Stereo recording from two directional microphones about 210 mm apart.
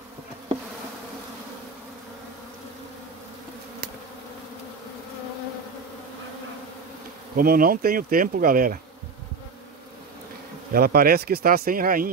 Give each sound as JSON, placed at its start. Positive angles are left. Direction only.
{"t": 7.3, "sound": "speech", "side_deg": -45}
{"t": 10.7, "sound": "speech", "side_deg": -45}